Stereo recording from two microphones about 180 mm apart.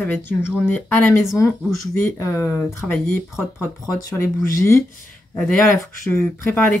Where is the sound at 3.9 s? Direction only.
20° left (ahead or behind).